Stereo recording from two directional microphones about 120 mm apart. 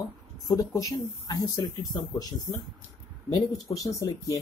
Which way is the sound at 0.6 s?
30° left (ahead or behind).